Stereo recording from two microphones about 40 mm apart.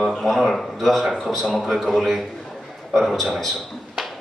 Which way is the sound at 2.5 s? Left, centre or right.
Centre.